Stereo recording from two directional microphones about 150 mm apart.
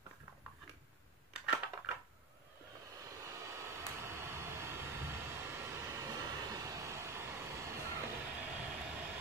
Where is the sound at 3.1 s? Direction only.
20° right (ahead or behind).